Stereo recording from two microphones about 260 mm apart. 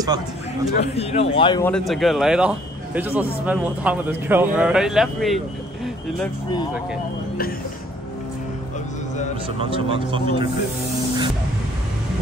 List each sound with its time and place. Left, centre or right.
0.9 s speech: left
1.7 s speech: centre
9.6 s speech: right